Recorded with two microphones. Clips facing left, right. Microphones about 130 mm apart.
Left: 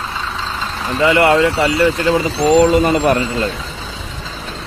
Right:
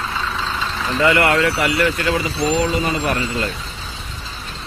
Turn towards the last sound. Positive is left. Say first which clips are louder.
# left 6 dB
turn(degrees=40)  # may be behind; listen again after turning